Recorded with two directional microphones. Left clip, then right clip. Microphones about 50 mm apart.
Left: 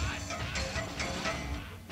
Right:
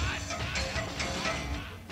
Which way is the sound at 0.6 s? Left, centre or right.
Left.